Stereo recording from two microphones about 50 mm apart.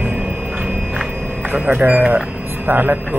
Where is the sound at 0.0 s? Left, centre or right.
Centre.